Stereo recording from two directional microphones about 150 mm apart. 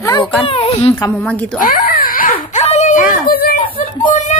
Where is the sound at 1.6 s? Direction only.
70° left (ahead or behind).